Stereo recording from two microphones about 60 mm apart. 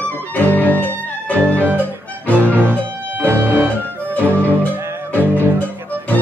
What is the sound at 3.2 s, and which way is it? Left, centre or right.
Music, right.